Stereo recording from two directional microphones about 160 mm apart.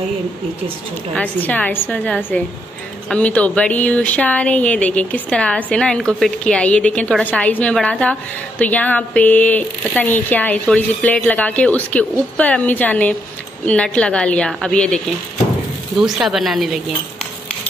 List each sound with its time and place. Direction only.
1.1 s speech: 10° left (ahead or behind)
16.0 s speech: centre (ahead or behind)